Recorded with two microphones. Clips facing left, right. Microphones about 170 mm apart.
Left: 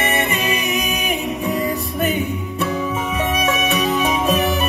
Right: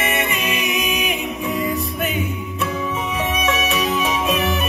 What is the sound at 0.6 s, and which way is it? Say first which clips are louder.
A capella: even; 40° left (ahead or behind).